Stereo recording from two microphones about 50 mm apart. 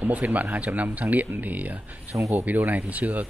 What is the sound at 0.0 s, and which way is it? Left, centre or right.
Speech, right.